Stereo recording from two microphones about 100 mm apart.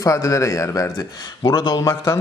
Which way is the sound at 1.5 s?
45° left (ahead or behind).